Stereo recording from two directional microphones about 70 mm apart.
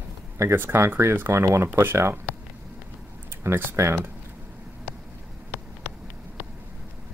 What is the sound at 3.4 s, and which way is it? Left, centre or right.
Speech, right.